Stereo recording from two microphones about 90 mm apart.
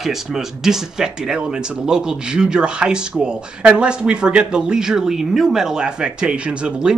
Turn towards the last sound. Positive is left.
turn(degrees=-10)  # may be behind; listen again after turning